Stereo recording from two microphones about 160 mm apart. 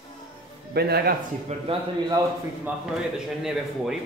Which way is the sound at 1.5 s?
45° right (ahead or behind).